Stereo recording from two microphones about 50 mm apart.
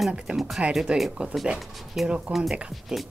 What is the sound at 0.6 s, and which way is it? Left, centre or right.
Speech, right.